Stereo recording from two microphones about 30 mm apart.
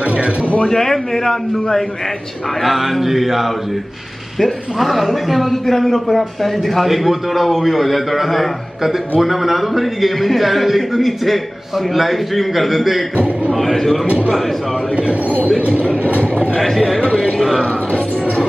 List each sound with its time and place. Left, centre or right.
0.0 s a sound: right
0.7 s a man's voice: centre
2.6 s mantra: centre
4.4 s a man's voice: centre
13.7 s a man's voice: centre
16.5 s a man's voice: centre